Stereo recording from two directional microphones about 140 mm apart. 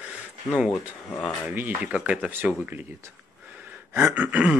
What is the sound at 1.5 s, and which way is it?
Speech, 10° right (ahead or behind).